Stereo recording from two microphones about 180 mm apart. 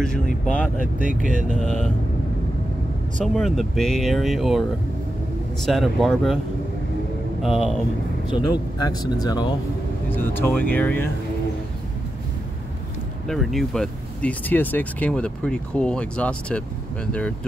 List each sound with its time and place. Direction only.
0.9 s speech: 50° left (ahead or behind)
3.3 s speech: centre (ahead or behind)
5.7 s speech: centre (ahead or behind)
7.4 s speech: centre (ahead or behind)
8.4 s speech: 25° left (ahead or behind)
13.3 s speech: centre (ahead or behind)